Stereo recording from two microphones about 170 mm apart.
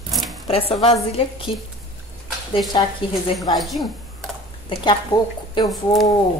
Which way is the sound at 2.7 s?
30° left (ahead or behind).